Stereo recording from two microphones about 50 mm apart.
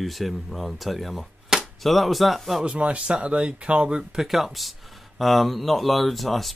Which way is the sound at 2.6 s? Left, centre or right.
Right.